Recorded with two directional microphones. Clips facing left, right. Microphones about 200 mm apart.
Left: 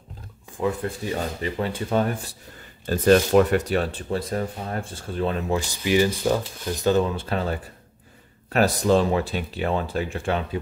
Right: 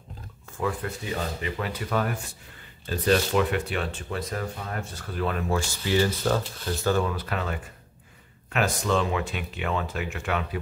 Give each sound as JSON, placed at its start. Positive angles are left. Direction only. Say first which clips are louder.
{"t": 0.5, "sound": "a sound", "louder": "left 4 dB", "side_deg": 20}
{"t": 0.8, "sound": "speech", "louder": "left 4 dB", "side_deg": 30}
{"t": 2.9, "sound": "speech", "louder": "left 6 dB", "side_deg": 45}